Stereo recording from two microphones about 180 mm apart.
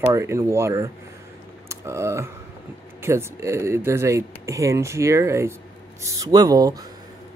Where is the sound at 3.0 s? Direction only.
15° right (ahead or behind).